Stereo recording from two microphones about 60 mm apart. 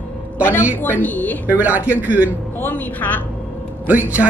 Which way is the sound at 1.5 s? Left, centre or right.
Right.